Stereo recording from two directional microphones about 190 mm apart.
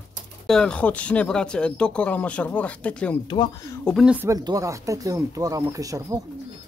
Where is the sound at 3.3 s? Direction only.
25° left (ahead or behind).